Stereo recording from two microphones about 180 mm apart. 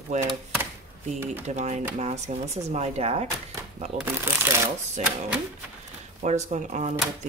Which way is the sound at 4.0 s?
10° right (ahead or behind).